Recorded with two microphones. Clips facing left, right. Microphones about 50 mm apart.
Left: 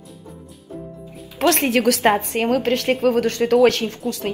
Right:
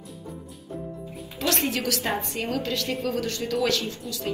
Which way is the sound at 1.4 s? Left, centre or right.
Left.